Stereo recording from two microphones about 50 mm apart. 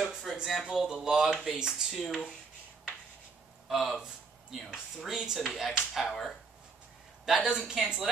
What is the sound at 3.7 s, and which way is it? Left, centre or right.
Speech, centre.